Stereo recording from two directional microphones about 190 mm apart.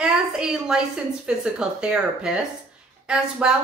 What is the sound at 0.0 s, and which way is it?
A woman's voice, 5° right (ahead or behind).